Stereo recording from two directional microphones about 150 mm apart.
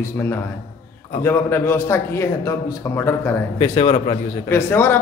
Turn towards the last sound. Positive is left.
turn(degrees=15)  # may be behind; listen again after turning